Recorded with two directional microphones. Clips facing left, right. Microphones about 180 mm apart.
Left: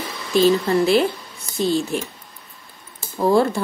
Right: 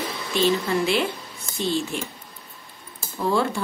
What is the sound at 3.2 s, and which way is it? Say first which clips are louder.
Speech: left 6 dB; 40° left (ahead or behind).